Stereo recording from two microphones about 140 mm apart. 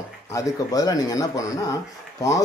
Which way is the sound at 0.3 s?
25° left (ahead or behind).